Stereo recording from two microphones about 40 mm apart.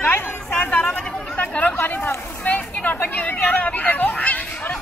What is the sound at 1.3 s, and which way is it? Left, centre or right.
Chatter, left.